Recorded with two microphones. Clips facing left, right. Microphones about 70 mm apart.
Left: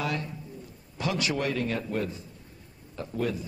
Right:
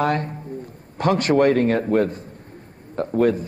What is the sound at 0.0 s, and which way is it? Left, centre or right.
Speech, right.